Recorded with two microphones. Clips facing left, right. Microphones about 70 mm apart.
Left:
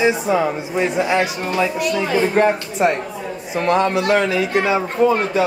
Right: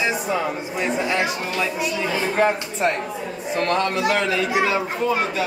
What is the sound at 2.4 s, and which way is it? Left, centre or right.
Speech, centre.